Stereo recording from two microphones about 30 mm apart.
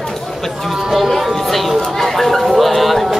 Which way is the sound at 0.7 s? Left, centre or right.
Centre.